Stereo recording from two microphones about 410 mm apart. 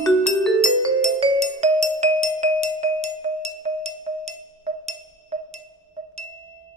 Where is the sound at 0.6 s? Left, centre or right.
Centre.